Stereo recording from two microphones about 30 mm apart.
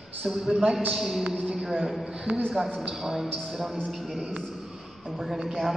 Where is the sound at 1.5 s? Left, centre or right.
Centre.